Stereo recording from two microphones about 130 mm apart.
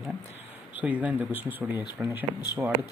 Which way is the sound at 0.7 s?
10° right (ahead or behind).